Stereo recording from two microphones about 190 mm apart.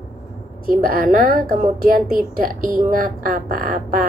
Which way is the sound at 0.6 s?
50° right (ahead or behind).